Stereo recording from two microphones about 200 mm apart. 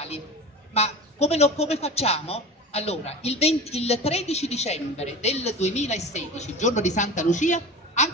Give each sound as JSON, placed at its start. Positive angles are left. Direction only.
{"t": 0.7, "sound": "a woman's voice", "side_deg": 30}